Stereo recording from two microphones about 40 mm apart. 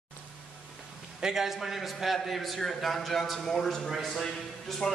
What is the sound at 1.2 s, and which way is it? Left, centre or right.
A man's voice, centre.